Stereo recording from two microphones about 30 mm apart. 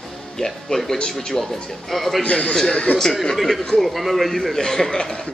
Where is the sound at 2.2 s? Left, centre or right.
Left.